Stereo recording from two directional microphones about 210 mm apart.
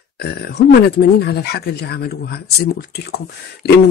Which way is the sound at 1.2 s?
50° left (ahead or behind).